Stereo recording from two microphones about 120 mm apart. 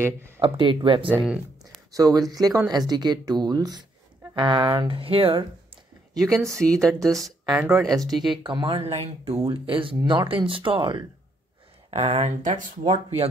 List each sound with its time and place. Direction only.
0.4 s speech: 45° right (ahead or behind)
1.9 s speech: 30° right (ahead or behind); by 5.4 s 50° right (ahead or behind)
6.1 s a woman's voice: 5° left (ahead or behind)
7.5 s speech: 20° right (ahead or behind)
8.1 s a woman's voice: centre (ahead or behind)
8.5 s speech: 40° right (ahead or behind)
8.9 s speech: 60° right (ahead or behind); by 11.1 s 40° right (ahead or behind)
11.9 s speech: 60° right (ahead or behind)